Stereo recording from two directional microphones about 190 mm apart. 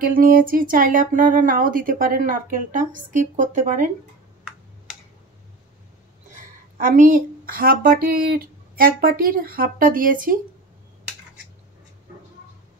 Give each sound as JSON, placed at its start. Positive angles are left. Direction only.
{"t": 0.0, "sound": "speech", "side_deg": -50}
{"t": 6.8, "sound": "speech", "side_deg": -45}